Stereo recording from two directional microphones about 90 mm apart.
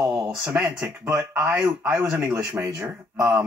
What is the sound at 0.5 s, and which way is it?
Speech, 30° right (ahead or behind).